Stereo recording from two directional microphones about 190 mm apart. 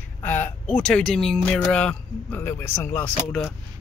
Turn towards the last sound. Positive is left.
turn(degrees=5)  # may be behind; listen again after turning